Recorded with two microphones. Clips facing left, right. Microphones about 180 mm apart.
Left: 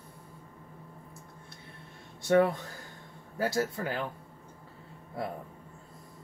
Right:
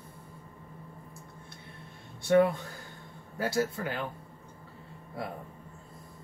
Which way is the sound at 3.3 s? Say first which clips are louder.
Even; 40° left (ahead or behind).